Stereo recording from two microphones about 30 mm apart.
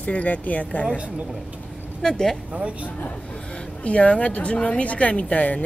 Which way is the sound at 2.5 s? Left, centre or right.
Right.